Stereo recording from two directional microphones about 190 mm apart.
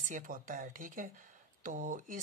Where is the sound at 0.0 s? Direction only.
45° right (ahead or behind).